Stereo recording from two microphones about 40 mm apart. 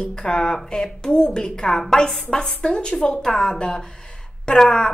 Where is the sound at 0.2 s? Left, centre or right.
Left.